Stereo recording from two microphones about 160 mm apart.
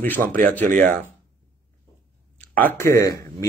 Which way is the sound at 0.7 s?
55° right (ahead or behind).